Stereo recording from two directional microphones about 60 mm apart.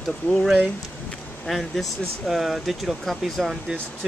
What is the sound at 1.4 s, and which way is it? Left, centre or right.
Speech, centre.